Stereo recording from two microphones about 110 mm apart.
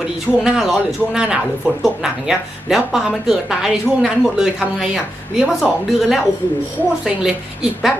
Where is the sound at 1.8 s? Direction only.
5° right (ahead or behind).